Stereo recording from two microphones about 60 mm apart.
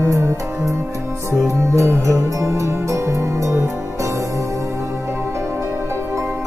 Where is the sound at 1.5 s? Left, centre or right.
Right.